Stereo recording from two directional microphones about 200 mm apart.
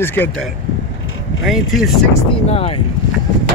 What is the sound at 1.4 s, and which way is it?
Speech, centre (ahead or behind).